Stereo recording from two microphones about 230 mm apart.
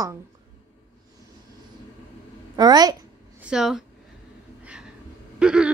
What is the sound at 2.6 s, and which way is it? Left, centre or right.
Speech, centre.